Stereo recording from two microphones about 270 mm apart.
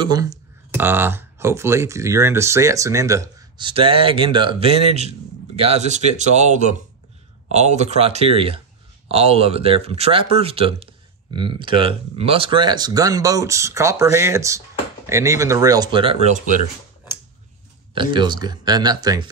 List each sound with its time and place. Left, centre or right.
0.0 s speech: centre
17.9 s speech: centre